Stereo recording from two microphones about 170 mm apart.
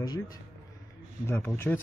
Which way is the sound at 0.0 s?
25° left (ahead or behind).